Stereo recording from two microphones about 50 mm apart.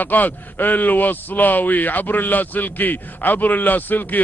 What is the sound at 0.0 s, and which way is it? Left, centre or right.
Speech, left.